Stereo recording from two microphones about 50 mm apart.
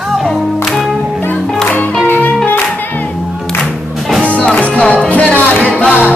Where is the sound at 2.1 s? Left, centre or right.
Left.